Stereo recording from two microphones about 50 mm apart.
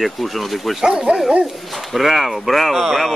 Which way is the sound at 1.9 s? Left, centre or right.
Centre.